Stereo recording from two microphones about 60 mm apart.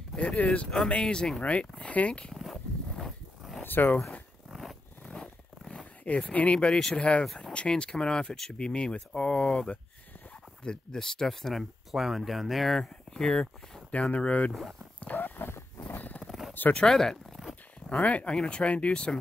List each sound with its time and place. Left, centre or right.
0.1 s speech: centre
3.6 s speech: left
4.5 s zipper: centre
5.0 s zipper: centre
6.6 s speech: centre
13.1 s speech: centre
14.5 s speech: centre
15.0 s a sound: left
16.0 s a sound: left
16.3 s a sound: centre
16.7 s speech: centre
17.8 s speech: left